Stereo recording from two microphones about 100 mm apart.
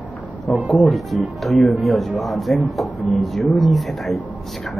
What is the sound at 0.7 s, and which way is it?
Speech, centre (ahead or behind).